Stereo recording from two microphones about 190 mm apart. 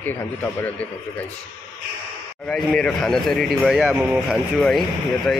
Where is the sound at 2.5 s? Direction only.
5° left (ahead or behind).